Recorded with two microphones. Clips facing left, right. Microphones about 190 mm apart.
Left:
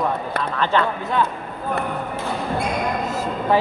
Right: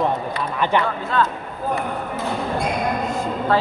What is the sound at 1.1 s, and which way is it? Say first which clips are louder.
Speech: right 1 dB; 15° left (ahead or behind).